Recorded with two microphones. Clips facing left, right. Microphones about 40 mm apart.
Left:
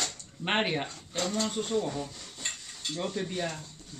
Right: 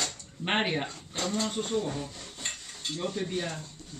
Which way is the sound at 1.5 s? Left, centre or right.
Right.